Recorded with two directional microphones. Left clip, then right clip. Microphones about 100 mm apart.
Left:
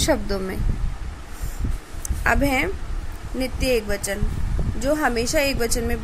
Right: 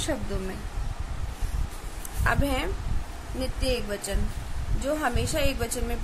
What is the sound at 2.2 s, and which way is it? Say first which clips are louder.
Speech: left 7 dB; 45° left (ahead or behind).